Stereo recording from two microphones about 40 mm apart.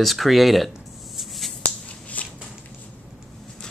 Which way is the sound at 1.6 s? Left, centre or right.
Left.